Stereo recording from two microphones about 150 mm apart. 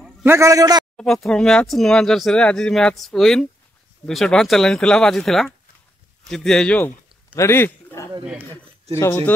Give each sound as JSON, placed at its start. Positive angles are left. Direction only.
{"t": 0.2, "sound": "a man's voice", "side_deg": -20}
{"t": 0.9, "sound": "speech", "side_deg": 0}
{"t": 7.3, "sound": "a sound", "side_deg": 15}
{"t": 8.9, "sound": "speech", "side_deg": 15}